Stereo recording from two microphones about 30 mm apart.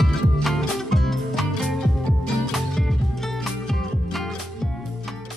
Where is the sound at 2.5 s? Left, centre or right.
Centre.